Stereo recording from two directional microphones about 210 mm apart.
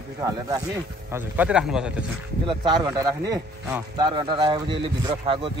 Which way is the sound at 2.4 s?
20° right (ahead or behind).